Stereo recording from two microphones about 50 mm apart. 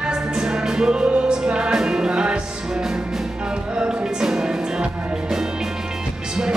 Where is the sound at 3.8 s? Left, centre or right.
Centre.